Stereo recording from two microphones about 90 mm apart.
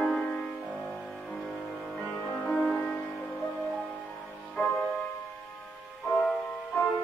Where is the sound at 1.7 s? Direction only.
5° right (ahead or behind).